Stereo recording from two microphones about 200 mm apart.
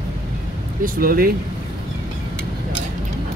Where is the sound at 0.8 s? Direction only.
45° right (ahead or behind).